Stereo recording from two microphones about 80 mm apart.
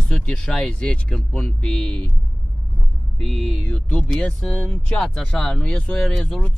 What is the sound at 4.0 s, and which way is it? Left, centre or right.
Speech, centre.